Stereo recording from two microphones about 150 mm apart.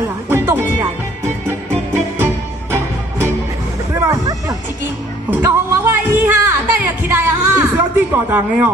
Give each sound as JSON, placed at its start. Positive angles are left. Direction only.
{"t": 0.7, "sound": "music", "side_deg": -15}
{"t": 4.0, "sound": "music", "side_deg": -25}